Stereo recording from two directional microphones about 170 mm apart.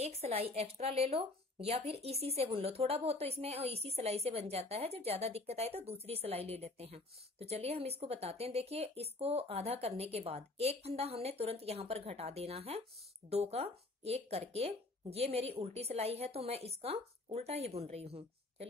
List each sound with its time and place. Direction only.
0.0 s speech: 35° right (ahead or behind)